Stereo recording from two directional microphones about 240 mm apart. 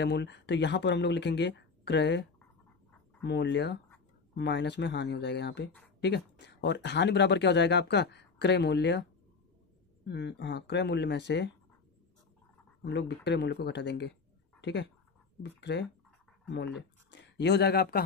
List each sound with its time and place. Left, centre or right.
0.0 s speech: left
3.3 s speech: left
10.0 s speech: left
12.8 s speech: left